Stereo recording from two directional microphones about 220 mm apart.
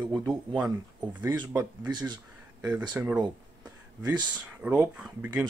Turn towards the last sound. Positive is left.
turn(degrees=-5)  # may be behind; listen again after turning